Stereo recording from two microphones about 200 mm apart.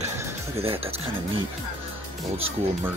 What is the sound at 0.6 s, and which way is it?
Speech, 30° right (ahead or behind).